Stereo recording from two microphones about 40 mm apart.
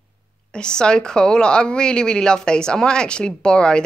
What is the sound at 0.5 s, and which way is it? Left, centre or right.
Speech, left.